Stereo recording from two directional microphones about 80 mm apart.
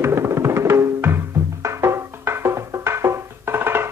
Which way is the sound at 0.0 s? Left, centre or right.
Right.